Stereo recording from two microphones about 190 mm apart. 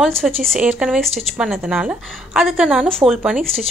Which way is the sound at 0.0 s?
Centre (ahead or behind).